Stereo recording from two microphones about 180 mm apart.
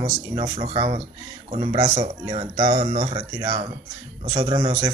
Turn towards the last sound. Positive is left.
turn(degrees=-20)  # may be behind; listen again after turning